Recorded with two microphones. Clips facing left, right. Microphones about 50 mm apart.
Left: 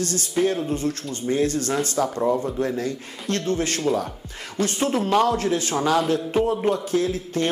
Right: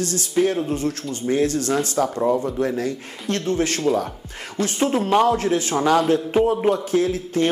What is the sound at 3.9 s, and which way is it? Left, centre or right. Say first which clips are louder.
Speech: right 2 dB; centre.